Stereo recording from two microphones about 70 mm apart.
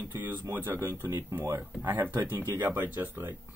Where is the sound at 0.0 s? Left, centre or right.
Right.